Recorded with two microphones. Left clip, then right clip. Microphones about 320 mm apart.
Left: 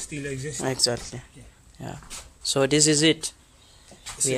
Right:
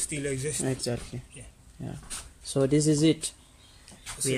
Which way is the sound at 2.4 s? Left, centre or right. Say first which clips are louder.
Left 4 dB; left.